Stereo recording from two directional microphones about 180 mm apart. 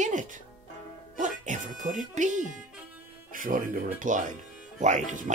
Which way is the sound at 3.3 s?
50° right (ahead or behind).